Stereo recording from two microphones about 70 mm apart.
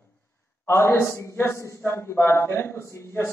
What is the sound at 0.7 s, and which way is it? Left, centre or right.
Speech, left.